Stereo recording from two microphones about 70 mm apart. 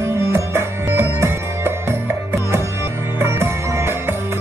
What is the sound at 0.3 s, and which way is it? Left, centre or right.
Music, right.